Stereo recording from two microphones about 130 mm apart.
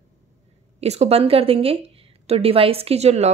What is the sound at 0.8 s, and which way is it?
A woman's voice, 55° right (ahead or behind).